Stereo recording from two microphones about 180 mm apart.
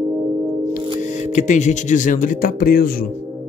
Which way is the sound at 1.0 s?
40° left (ahead or behind).